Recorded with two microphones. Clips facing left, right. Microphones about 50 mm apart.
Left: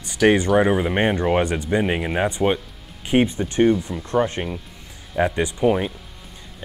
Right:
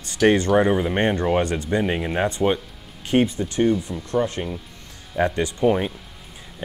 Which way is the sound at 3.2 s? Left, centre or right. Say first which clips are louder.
Left 3 dB; left.